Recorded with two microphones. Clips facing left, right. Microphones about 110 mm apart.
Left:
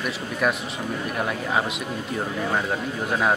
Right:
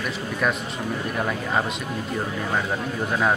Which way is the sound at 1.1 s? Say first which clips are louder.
Even; 5° left (ahead or behind).